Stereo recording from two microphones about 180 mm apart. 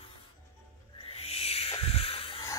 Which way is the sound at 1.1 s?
35° left (ahead or behind).